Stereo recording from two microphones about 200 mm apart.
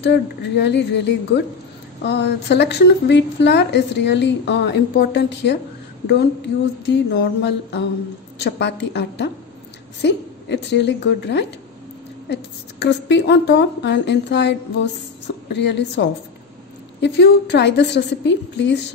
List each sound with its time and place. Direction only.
0.0 s a woman's voice: 60° left (ahead or behind)